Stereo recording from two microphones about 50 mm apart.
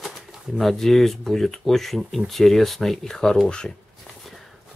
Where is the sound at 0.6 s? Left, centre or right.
Centre.